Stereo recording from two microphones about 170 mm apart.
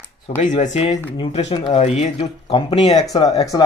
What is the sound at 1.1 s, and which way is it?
Speech, 30° left (ahead or behind).